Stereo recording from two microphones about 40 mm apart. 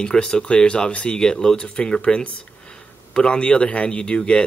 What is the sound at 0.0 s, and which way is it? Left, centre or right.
Speech, centre.